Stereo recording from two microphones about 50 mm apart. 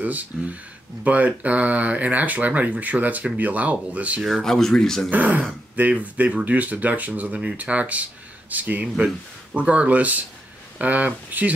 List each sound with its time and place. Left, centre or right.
0.0 s speech: right
4.4 s speech: centre
5.1 s speech: right